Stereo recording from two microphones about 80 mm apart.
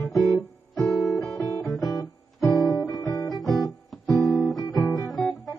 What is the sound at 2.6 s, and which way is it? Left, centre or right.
Guitar, left.